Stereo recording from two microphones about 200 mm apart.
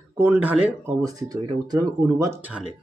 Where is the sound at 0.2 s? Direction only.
10° right (ahead or behind).